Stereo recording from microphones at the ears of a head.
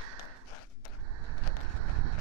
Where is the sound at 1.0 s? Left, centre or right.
Right.